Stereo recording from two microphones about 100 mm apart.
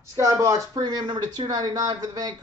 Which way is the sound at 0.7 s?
45° right (ahead or behind).